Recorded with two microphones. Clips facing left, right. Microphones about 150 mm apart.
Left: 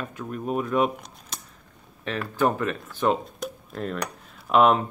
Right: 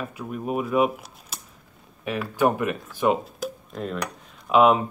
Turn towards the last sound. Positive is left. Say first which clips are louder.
# right 1 dB
turn(degrees=-5)  # may be behind; listen again after turning